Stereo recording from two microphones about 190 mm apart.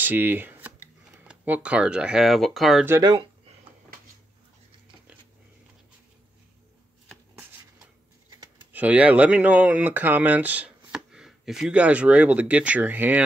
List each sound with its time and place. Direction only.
0.0 s a sound: 10° right (ahead or behind)
1.2 s speech: 5° right (ahead or behind)
2.9 s speech: 20° right (ahead or behind)
8.7 s speech: 5° right (ahead or behind)